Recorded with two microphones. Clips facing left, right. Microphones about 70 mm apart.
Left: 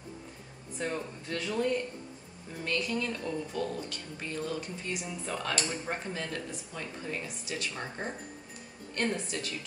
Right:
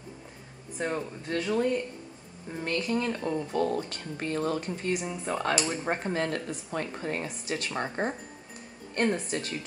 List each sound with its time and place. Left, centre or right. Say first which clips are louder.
0.7 s speech: right 3 dB; right
2.5 s speech: right 3 dB; right
3.9 s speech: right 6 dB; right
5.0 s speech: right 5 dB; right
5.7 s speech: right 6 dB; right